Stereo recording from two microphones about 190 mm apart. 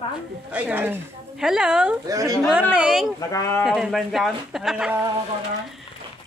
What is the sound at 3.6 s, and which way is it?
Speech, centre (ahead or behind).